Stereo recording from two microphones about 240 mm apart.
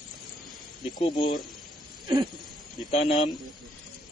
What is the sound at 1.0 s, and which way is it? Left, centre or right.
Speech, left.